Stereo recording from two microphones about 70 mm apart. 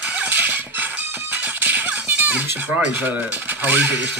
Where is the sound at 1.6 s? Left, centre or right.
Right.